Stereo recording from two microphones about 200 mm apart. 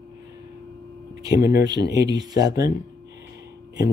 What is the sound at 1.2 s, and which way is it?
Speech, 20° right (ahead or behind).